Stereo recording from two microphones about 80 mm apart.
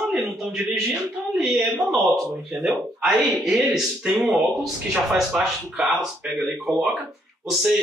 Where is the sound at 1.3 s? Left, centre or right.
Centre.